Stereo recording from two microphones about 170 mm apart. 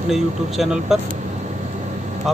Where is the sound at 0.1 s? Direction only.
Centre (ahead or behind).